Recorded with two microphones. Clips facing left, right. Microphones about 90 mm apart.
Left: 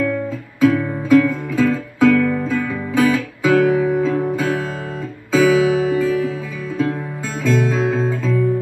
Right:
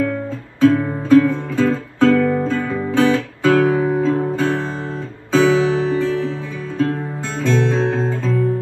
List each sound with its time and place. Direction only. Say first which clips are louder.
0.6 s music: right 1 dB; 30° right (ahead or behind)
5.7 s music: left 1 dB; 10° left (ahead or behind)
5.9 s music: left 1 dB; 30° right (ahead or behind)
7.4 s guitar: even; 30° right (ahead or behind)